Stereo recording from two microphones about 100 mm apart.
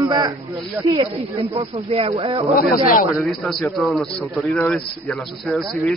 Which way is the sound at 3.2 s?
10° left (ahead or behind).